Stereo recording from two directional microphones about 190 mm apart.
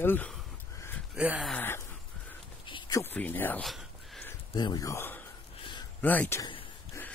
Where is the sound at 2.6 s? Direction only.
25° left (ahead or behind).